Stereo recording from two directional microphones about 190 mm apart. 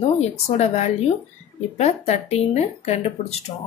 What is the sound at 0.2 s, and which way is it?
Speech, 35° left (ahead or behind).